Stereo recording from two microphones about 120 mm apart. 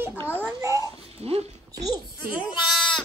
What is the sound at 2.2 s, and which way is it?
Speech, 10° right (ahead or behind).